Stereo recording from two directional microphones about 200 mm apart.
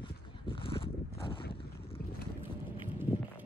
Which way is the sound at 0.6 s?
25° left (ahead or behind).